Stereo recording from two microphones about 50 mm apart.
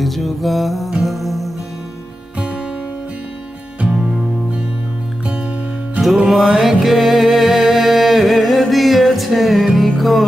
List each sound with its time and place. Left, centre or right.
0.0 s music: centre
3.8 s music: centre
6.2 s music: centre